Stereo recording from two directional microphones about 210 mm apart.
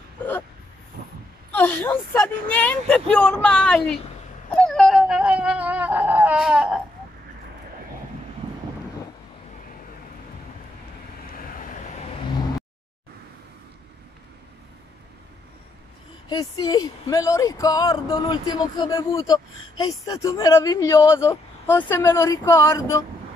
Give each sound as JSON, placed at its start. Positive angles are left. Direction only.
{"t": 1.5, "sound": "speech", "side_deg": 10}
{"t": 4.5, "sound": "dog", "side_deg": 0}
{"t": 16.3, "sound": "speech", "side_deg": 20}